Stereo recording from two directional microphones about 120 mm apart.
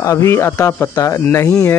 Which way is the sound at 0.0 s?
25° left (ahead or behind).